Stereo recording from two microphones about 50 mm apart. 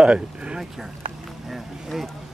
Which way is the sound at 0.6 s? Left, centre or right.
Centre.